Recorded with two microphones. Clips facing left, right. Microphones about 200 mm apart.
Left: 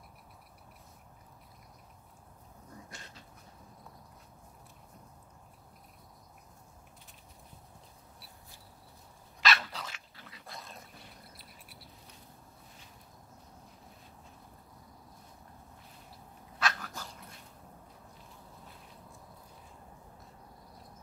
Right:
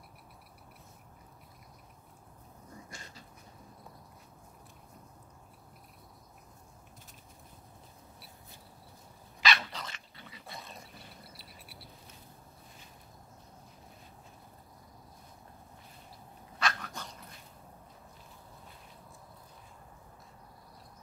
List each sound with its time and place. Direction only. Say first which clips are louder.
2.9 s a sound: right 1 dB; centre (ahead or behind)
9.4 s dog: even; centre (ahead or behind)
16.5 s dog: even; centre (ahead or behind)